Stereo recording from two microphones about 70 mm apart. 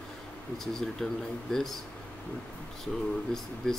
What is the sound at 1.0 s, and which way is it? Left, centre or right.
Speech, centre.